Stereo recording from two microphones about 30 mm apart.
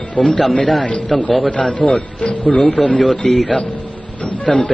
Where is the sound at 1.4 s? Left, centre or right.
Left.